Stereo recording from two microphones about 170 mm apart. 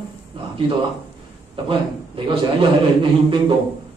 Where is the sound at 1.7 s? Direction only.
30° right (ahead or behind).